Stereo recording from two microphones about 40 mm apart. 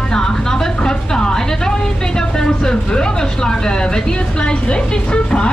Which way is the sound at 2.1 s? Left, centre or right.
Centre.